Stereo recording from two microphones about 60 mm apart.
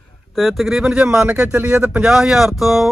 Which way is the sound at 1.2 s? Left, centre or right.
Right.